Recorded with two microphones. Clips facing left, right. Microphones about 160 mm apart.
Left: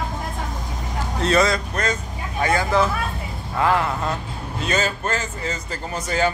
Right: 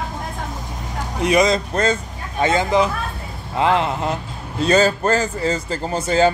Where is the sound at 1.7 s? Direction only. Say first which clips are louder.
Right 5 dB; 30° right (ahead or behind).